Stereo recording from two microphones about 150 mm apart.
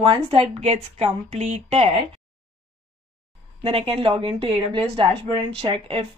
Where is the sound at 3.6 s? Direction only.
40° right (ahead or behind).